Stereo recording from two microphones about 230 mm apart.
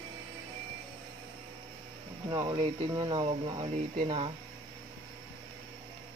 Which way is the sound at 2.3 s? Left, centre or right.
Centre.